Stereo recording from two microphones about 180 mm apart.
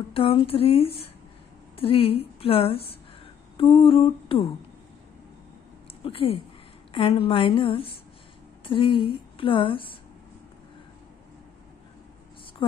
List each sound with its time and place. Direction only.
0.1 s a woman's voice: 30° left (ahead or behind)
3.5 s humming: 30° left (ahead or behind)
6.0 s a woman's voice: 35° left (ahead or behind)